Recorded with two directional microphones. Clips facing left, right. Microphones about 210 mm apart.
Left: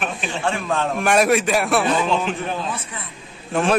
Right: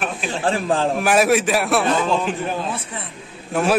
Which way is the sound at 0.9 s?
5° right (ahead or behind).